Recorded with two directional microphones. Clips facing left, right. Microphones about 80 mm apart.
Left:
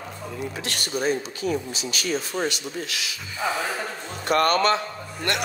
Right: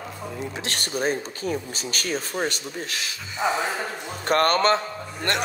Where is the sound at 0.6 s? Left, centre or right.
Right.